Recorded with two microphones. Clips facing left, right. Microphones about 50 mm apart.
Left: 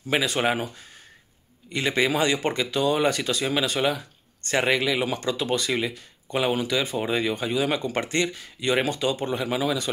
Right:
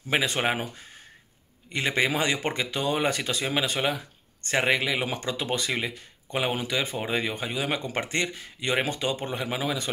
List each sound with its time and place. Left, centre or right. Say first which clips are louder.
0.1 s speech: left 2 dB; right